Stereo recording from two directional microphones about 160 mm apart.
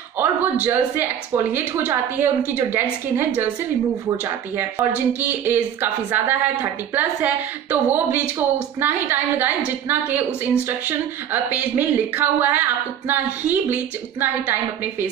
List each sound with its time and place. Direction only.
0.2 s speech: 10° right (ahead or behind)
4.6 s speech: 10° right (ahead or behind)